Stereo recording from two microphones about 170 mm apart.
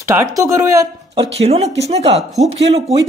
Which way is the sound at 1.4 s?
35° right (ahead or behind).